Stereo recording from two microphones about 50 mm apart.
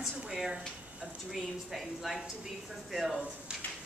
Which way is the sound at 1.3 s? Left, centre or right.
Centre.